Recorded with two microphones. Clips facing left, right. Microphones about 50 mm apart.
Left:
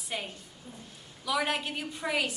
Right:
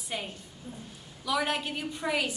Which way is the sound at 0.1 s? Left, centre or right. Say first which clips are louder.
Right 1 dB; centre.